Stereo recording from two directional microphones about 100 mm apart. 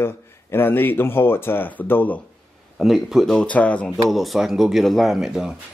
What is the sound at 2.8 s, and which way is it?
Speech, centre (ahead or behind).